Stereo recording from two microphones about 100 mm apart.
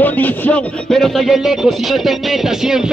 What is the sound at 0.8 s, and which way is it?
Music, 5° left (ahead or behind).